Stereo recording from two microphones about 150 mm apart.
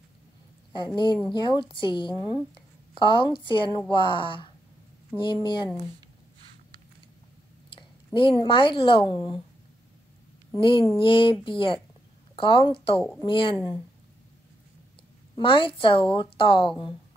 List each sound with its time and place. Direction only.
0.7 s speech: 30° left (ahead or behind)
7.7 s speech: 35° left (ahead or behind)
10.6 s speech: 35° left (ahead or behind)
15.3 s speech: 35° left (ahead or behind)